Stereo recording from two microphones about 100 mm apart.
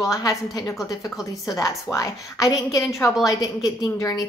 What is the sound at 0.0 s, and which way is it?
Speech, 35° left (ahead or behind).